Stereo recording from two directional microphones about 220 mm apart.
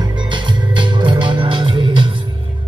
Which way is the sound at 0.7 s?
20° right (ahead or behind).